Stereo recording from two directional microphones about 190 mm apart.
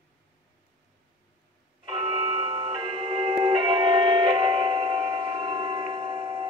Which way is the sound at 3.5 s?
25° right (ahead or behind).